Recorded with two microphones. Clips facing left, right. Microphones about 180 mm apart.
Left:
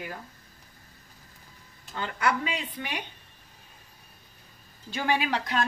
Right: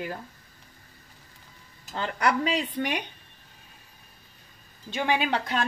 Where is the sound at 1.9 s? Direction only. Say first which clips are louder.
Right 2 dB; 35° right (ahead or behind).